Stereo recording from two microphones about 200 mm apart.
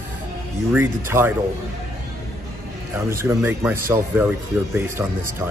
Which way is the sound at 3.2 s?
10° right (ahead or behind).